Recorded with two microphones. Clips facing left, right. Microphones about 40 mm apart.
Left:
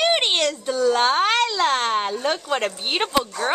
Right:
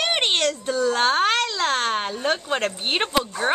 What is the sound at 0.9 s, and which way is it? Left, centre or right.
A woman's voice, centre.